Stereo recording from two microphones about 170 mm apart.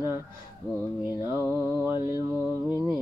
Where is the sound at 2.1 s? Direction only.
15° right (ahead or behind).